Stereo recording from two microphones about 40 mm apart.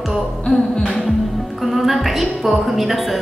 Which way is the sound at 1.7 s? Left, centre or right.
Centre.